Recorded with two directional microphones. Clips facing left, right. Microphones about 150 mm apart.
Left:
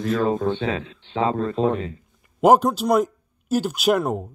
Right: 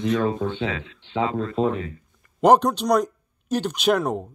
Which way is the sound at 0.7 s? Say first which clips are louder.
Left 1 dB; 30° left (ahead or behind).